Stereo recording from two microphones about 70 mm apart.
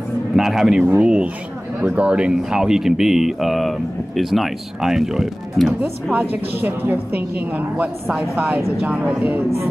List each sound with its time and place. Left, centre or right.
0.4 s a woman's voice: centre
6.1 s a woman's voice: right